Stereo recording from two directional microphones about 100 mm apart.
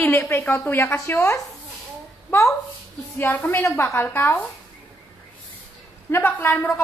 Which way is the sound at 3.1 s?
20° left (ahead or behind).